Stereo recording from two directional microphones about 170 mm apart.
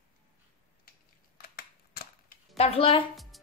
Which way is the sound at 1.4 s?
60° left (ahead or behind).